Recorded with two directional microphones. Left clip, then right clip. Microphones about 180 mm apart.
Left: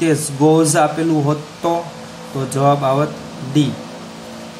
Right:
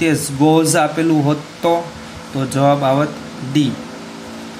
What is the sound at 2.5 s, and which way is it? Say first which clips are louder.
Speech: right 1 dB; 20° right (ahead or behind).